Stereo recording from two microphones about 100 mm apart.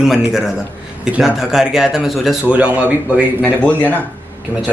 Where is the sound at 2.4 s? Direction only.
15° right (ahead or behind).